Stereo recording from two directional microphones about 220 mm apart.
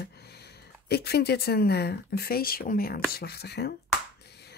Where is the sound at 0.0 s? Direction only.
45° left (ahead or behind).